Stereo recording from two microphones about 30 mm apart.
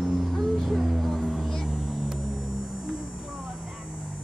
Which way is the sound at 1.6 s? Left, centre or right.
Right.